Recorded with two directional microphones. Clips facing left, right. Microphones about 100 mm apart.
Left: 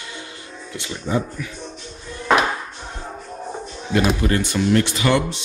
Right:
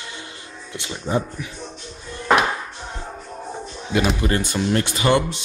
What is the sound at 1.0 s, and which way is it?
Speech, 20° right (ahead or behind).